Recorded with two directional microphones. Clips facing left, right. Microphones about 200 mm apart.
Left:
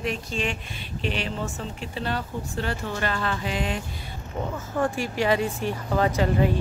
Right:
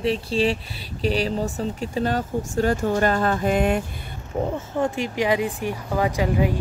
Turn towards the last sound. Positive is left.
turn(degrees=-10)  # may be behind; listen again after turning